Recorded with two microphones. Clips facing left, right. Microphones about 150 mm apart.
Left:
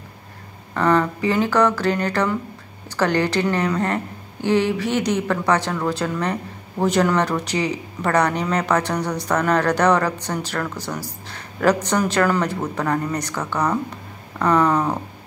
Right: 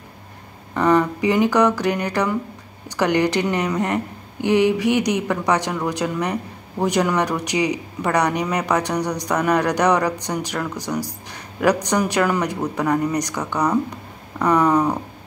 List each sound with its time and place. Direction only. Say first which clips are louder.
0.7 s speech: right 1 dB; 15° right (ahead or behind)